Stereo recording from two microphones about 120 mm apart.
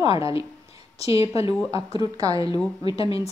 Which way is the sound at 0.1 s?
55° left (ahead or behind).